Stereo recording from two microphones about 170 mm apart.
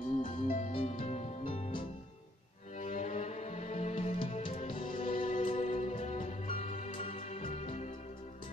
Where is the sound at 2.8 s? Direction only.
45° left (ahead or behind).